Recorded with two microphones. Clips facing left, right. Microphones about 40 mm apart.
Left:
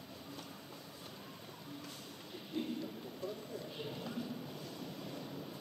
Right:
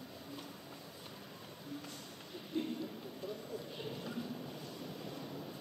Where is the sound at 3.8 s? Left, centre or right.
Centre.